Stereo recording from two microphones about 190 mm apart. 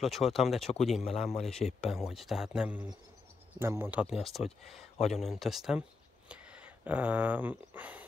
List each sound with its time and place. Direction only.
0.0 s speech: centre (ahead or behind)